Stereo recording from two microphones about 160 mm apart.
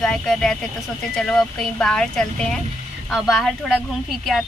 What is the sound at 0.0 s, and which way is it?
Speech, 5° left (ahead or behind).